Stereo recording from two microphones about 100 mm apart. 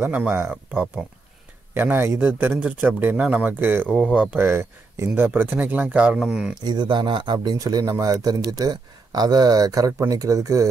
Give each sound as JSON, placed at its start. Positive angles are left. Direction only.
{"t": 0.0, "sound": "speech", "side_deg": -20}
{"t": 3.9, "sound": "speech", "side_deg": -5}
{"t": 4.2, "sound": "speech", "side_deg": -20}
{"t": 6.6, "sound": "speech", "side_deg": -45}
{"t": 7.3, "sound": "a man's voice", "side_deg": -35}